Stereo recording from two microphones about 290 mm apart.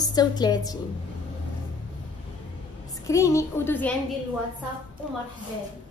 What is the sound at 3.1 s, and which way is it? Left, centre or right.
Speech, centre.